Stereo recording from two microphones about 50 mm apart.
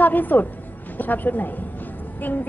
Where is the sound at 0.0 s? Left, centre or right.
Left.